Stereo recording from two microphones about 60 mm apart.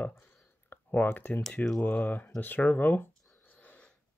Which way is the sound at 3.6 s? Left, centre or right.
Left.